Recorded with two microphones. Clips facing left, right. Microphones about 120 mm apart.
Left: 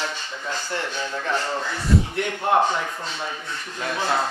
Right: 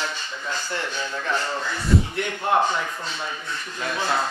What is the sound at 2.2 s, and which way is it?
Speech, 45° left (ahead or behind).